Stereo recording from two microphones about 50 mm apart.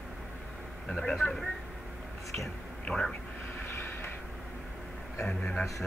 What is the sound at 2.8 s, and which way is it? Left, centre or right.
Speech, centre.